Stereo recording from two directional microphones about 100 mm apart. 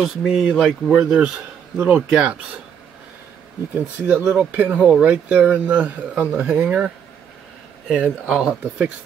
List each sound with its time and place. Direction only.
0.0 s speech: centre (ahead or behind)
3.7 s speech: 15° right (ahead or behind)
8.0 s speech: 10° right (ahead or behind)